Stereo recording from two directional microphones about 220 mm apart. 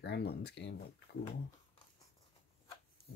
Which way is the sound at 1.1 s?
45° left (ahead or behind).